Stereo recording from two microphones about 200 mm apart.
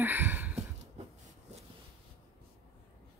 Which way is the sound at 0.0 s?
10° right (ahead or behind).